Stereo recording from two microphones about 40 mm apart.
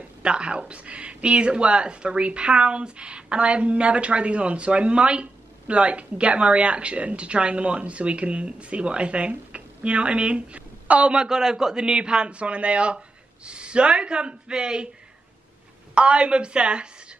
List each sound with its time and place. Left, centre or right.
0.2 s speech: right
11.1 s speech: centre
15.9 s speech: right